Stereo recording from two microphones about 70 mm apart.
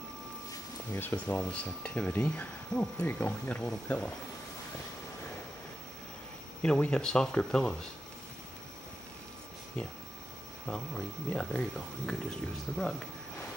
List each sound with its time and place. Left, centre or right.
0.9 s speech: left
6.9 s speech: centre
9.8 s speech: centre